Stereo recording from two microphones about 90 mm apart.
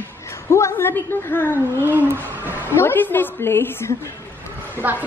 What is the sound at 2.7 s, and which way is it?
A woman's voice, 25° left (ahead or behind).